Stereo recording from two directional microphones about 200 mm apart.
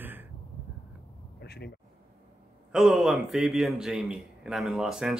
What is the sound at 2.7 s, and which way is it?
A man's voice, centre (ahead or behind).